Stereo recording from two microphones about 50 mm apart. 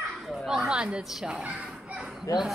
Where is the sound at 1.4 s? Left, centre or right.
Right.